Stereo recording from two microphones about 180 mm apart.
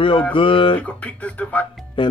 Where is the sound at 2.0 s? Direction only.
25° left (ahead or behind).